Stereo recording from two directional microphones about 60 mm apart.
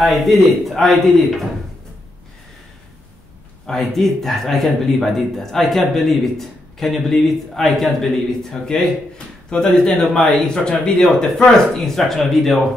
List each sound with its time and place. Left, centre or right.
0.0 s speech: centre
3.6 s speech: centre